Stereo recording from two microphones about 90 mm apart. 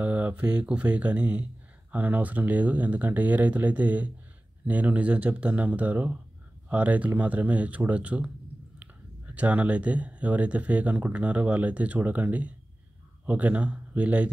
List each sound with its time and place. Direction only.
0.0 s speech: 20° right (ahead or behind)
9.3 s speech: 15° right (ahead or behind)